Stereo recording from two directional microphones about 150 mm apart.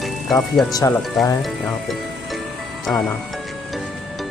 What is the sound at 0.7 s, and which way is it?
Speech, 25° left (ahead or behind).